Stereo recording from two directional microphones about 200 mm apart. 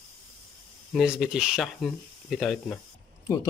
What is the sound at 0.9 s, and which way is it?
Speech, 5° right (ahead or behind).